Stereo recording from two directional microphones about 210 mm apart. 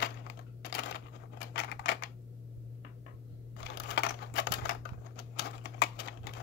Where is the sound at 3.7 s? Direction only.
55° left (ahead or behind).